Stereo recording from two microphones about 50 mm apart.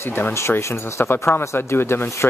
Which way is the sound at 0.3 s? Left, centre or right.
Left.